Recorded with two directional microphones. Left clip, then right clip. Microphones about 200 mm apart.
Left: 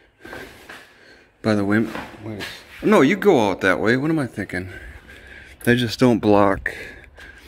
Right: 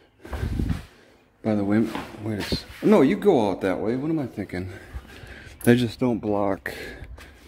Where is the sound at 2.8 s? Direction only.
Centre (ahead or behind).